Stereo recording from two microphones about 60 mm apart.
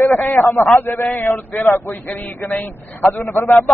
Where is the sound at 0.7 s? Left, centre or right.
Left.